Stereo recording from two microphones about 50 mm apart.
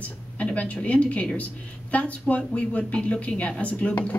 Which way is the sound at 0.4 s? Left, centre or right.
Left.